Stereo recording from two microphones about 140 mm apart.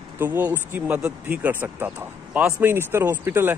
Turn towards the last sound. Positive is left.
turn(degrees=-15)  # may be behind; listen again after turning